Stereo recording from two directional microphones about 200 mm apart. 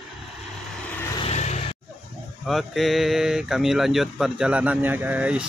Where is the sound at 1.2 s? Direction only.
35° left (ahead or behind).